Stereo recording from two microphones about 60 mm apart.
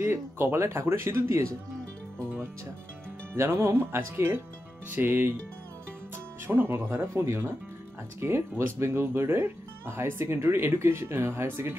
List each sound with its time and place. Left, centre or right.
0.0 s speech: right
3.3 s speech: right
4.9 s music: right
6.1 s speech: right